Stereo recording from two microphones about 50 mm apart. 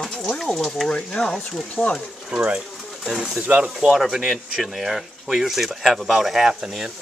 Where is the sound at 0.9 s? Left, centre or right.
Centre.